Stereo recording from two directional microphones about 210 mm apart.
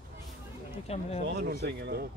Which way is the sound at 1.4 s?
50° right (ahead or behind).